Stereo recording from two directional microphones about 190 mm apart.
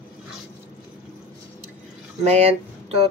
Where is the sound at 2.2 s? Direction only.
35° right (ahead or behind).